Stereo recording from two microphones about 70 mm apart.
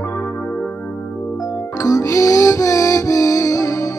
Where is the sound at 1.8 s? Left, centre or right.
Left.